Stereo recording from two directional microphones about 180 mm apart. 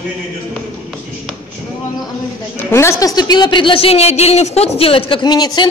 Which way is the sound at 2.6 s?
15° left (ahead or behind).